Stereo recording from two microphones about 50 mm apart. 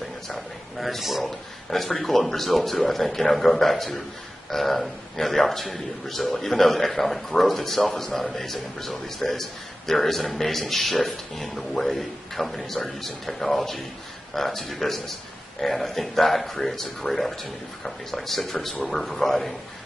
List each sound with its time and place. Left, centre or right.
0.3 s a man's voice: centre